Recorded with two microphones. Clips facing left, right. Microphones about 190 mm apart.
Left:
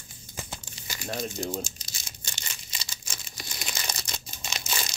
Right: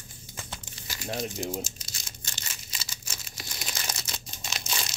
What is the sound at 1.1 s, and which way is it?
Speech, 20° right (ahead or behind).